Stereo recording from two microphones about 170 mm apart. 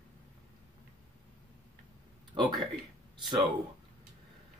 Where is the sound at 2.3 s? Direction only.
25° right (ahead or behind).